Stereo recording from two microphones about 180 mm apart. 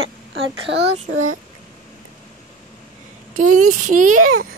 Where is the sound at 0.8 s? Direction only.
40° right (ahead or behind).